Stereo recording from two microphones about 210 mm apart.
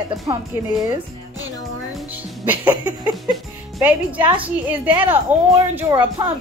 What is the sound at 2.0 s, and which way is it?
Music, 10° right (ahead or behind).